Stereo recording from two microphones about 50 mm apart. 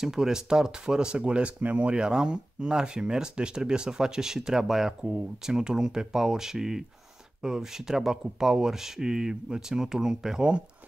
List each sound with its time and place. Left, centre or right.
0.0 s speech: centre
1.6 s speech: right
1.9 s speech: centre